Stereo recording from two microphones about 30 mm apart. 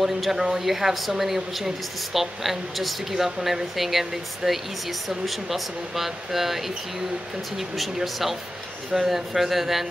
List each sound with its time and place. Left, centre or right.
0.0 s speech: centre